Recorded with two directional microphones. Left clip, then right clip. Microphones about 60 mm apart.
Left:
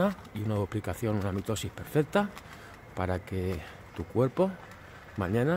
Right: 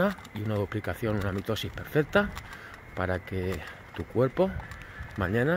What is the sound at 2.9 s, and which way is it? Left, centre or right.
Speech, left.